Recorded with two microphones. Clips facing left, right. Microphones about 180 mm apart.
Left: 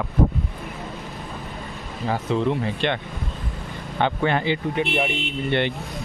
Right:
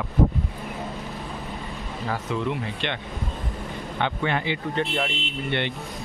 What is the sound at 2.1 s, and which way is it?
Speech, 30° left (ahead or behind).